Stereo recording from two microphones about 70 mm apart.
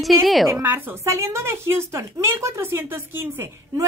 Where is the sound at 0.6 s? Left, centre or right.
Right.